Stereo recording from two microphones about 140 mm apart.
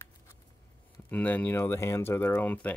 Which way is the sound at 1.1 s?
10° left (ahead or behind).